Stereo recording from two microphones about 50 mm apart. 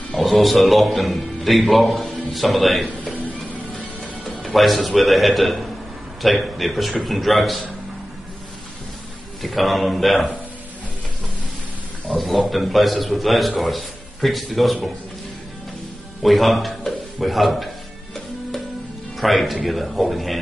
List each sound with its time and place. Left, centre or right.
0.1 s a man's voice: centre
4.6 s a man's voice: centre
9.4 s a man's voice: centre
12.1 s a man's voice: centre
16.2 s speech: centre
19.1 s a man's voice: centre